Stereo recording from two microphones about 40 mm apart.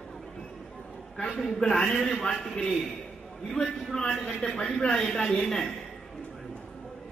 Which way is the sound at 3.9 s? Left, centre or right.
Centre.